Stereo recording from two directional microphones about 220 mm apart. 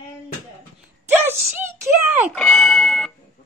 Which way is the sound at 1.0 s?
10° right (ahead or behind).